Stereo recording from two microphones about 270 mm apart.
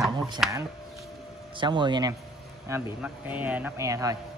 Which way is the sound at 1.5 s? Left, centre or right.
Centre.